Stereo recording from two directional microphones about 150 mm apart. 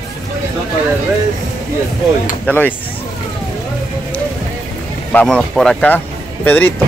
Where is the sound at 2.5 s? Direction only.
10° left (ahead or behind).